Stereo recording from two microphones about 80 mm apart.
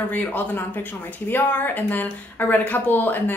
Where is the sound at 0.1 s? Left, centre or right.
Left.